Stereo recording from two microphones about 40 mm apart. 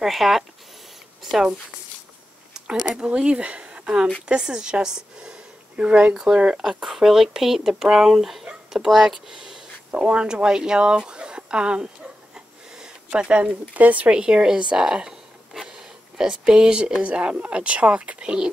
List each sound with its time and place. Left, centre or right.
0.0 s speech: centre
2.5 s a sound: centre
3.0 s speech: right
5.9 s speech: right
6.1 s speech: centre
6.6 s speech: centre
9.3 s speech: centre
12.4 s a sound: centre
13.3 s speech: right
14.1 s speech: right
15.6 s a sound: centre
17.0 s speech: right
18.2 s speech: right